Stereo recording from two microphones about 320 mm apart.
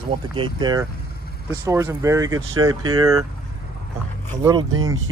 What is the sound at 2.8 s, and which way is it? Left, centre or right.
Speech, right.